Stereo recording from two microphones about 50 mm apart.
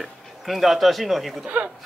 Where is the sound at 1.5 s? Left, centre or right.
Right.